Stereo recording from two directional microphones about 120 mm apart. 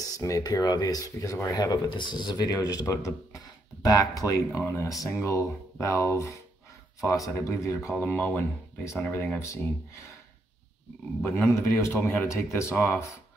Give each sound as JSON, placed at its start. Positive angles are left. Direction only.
{"t": 0.0, "sound": "a man's voice", "side_deg": 30}
{"t": 7.9, "sound": "speech", "side_deg": 15}
{"t": 11.2, "sound": "a man's voice", "side_deg": 25}